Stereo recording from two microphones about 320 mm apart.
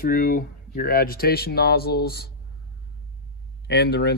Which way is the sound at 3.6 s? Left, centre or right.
Left.